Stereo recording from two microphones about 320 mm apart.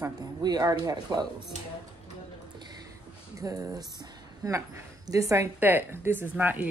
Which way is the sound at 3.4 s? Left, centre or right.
Centre.